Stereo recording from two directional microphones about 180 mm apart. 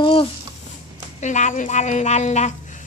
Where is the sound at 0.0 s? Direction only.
30° left (ahead or behind).